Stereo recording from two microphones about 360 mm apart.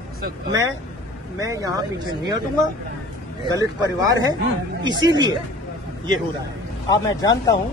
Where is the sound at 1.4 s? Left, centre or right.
Centre.